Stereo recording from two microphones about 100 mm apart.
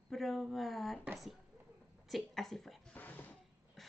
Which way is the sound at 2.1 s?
Centre (ahead or behind).